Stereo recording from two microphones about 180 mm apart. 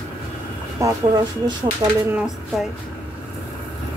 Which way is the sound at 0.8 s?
25° right (ahead or behind).